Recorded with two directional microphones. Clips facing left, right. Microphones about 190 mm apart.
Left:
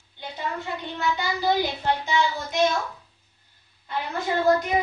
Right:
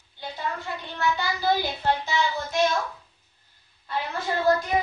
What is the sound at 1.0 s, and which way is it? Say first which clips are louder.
Child singing: even; 15° left (ahead or behind).